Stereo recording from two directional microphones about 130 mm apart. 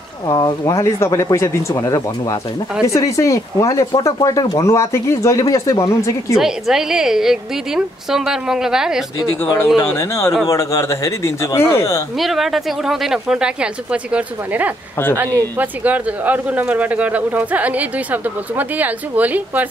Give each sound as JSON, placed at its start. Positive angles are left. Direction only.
{"t": 0.3, "sound": "speech", "side_deg": 30}
{"t": 6.3, "sound": "a woman's voice", "side_deg": -5}
{"t": 9.2, "sound": "speech", "side_deg": 25}
{"t": 12.2, "sound": "a woman's voice", "side_deg": 0}